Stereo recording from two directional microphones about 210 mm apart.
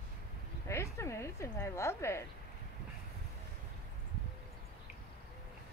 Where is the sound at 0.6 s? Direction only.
15° left (ahead or behind).